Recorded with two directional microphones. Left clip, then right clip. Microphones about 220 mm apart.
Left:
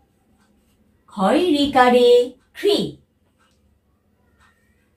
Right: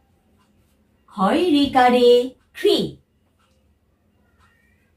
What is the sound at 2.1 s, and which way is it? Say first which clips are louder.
Speech: left 1 dB; 20° right (ahead or behind).